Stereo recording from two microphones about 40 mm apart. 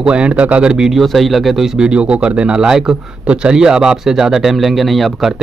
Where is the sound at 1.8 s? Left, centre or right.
Right; by 5.1 s centre.